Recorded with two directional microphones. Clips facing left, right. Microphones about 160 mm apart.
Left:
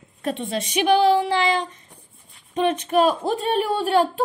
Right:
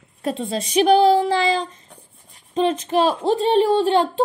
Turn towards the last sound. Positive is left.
turn(degrees=-25)  # may be behind; listen again after turning